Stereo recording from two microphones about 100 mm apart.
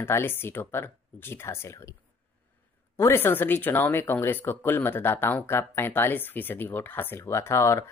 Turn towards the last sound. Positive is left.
turn(degrees=30)  # may be behind; listen again after turning